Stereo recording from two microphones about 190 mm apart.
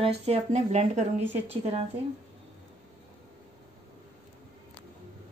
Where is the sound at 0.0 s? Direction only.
30° right (ahead or behind).